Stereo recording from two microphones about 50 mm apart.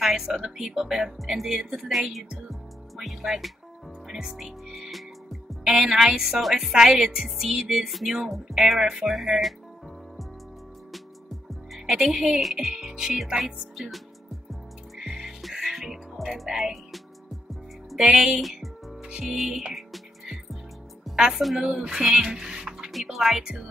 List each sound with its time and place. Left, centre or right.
0.0 s speech: centre
4.7 s music: centre
5.7 s speech: centre
11.8 s speech: centre
15.0 s music: centre
17.9 s speech: centre
18.4 s music: centre
19.0 s music: centre
19.3 s speech: centre
19.7 s music: centre
21.4 s speech: centre
21.6 s speech: centre
23.4 s speech: centre